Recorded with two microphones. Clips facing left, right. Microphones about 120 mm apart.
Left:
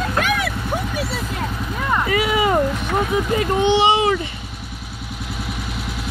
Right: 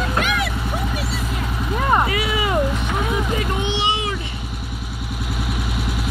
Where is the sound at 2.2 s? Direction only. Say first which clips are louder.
Left 4 dB; 45° left (ahead or behind).